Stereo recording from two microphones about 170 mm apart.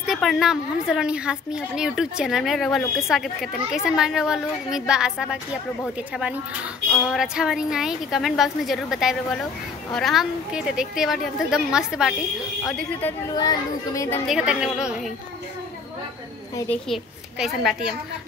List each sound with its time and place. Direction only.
0.0 s a woman's voice: centre (ahead or behind)
13.4 s speech: 20° left (ahead or behind)
14.2 s a woman's voice: 5° right (ahead or behind)
16.5 s a woman's voice: 10° left (ahead or behind)
17.4 s a woman's voice: 5° right (ahead or behind)